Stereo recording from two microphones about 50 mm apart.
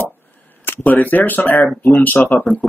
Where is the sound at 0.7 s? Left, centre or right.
Left.